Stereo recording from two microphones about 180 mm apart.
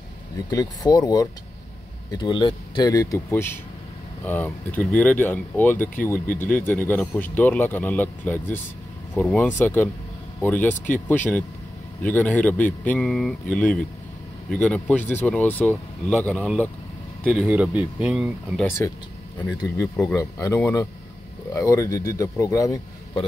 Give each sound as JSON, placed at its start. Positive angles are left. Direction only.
{"t": 0.5, "sound": "speech", "side_deg": 20}
{"t": 17.3, "sound": "speech", "side_deg": -5}
{"t": 18.8, "sound": "speech", "side_deg": 10}
{"t": 19.5, "sound": "speech", "side_deg": 20}